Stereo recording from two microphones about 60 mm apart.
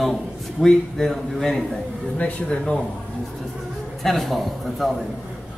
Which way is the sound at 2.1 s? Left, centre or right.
Centre.